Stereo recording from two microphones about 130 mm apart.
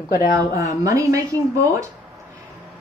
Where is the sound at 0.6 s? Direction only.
25° right (ahead or behind).